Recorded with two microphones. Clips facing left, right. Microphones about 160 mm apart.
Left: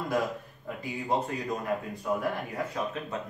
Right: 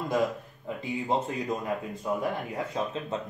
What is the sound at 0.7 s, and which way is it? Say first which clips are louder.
Speech: right 1 dB; 20° right (ahead or behind).